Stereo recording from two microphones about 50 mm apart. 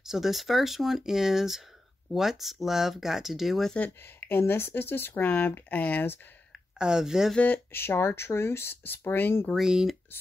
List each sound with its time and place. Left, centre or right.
0.0 s speech: centre
4.0 s speech: left
6.8 s speech: centre
7.3 s speech: left
7.7 s speech: left
9.6 s speech: centre